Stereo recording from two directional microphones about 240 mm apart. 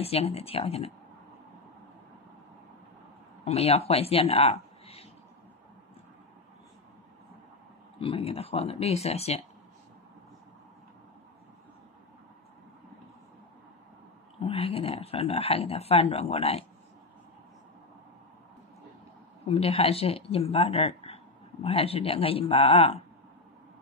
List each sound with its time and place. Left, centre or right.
0.0 s speech: left
3.4 s speech: left
8.0 s speech: left
14.4 s speech: left
19.4 s speech: left